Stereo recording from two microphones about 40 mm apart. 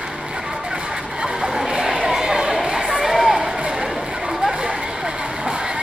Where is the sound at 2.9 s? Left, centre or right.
Centre.